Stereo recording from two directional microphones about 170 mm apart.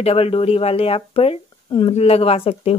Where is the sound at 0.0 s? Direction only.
35° left (ahead or behind).